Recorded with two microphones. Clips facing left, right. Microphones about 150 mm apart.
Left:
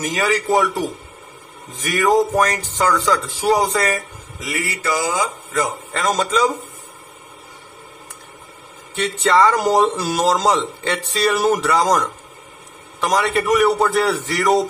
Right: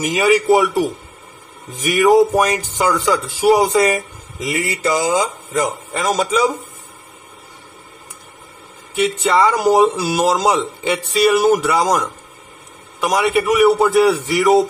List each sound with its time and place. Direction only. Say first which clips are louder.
0.0 s speech: right 5 dB; 15° right (ahead or behind)
6.0 s speech: right 1 dB; 5° right (ahead or behind)
8.9 s a man's voice: right 1 dB; 10° right (ahead or behind)